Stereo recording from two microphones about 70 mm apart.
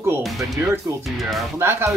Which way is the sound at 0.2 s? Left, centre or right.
Centre.